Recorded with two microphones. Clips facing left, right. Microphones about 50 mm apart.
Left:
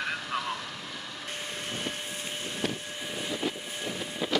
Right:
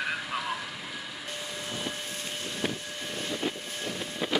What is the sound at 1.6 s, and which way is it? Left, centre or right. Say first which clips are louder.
Vehicle: even; left.